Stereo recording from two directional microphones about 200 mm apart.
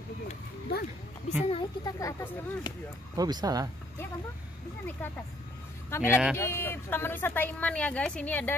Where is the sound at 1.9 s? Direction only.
15° left (ahead or behind).